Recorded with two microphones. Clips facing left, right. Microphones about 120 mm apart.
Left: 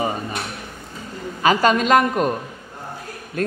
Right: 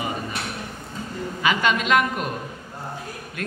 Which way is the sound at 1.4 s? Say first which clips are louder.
Left 6 dB; 40° left (ahead or behind).